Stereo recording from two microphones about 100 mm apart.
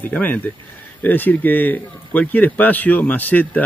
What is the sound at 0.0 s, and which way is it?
Speech, 20° left (ahead or behind).